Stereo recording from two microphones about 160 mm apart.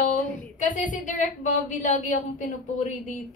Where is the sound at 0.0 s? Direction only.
55° left (ahead or behind).